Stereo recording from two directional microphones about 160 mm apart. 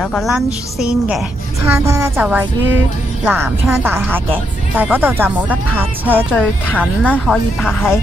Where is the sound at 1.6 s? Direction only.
20° right (ahead or behind).